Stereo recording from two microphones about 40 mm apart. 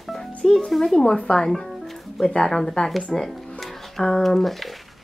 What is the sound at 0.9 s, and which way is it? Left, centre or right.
Speech, left.